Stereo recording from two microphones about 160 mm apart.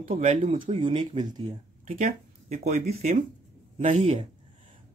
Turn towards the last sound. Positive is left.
turn(degrees=-40)  # may be behind; listen again after turning